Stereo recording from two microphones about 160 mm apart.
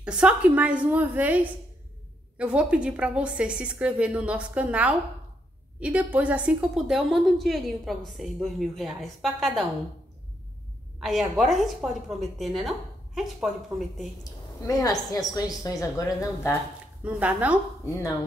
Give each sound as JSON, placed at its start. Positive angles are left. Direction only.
{"t": 0.0, "sound": "a woman's voice", "side_deg": -5}
{"t": 11.0, "sound": "a woman's voice", "side_deg": 0}
{"t": 14.2, "sound": "a woman's voice", "side_deg": 20}
{"t": 17.0, "sound": "a woman's voice", "side_deg": -10}